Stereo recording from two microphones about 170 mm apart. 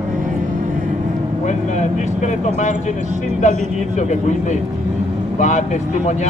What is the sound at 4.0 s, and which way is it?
Speech, 45° left (ahead or behind).